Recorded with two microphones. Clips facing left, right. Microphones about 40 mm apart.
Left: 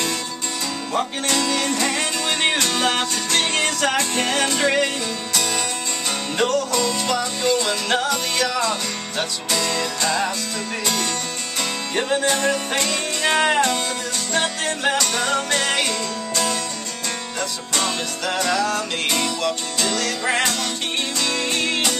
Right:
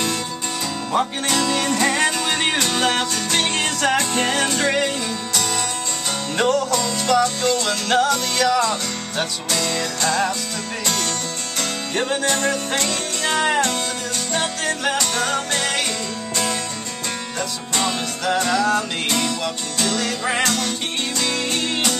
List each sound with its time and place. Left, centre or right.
1.3 s music: centre
11.9 s music: centre
13.2 s music: centre
17.7 s music: centre
21.2 s music: centre